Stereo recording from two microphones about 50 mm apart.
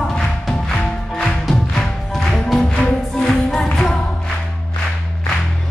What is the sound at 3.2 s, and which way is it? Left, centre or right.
Music, centre.